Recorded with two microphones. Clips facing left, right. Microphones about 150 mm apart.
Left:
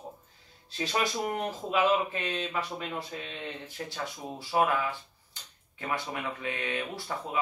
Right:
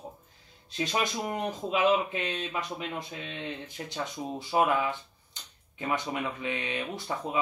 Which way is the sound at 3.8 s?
20° right (ahead or behind).